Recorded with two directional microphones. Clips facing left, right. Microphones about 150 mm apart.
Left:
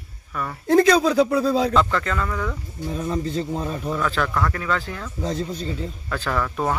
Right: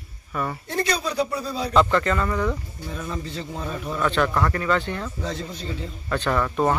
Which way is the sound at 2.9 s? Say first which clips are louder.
Left 7 dB; 35° left (ahead or behind).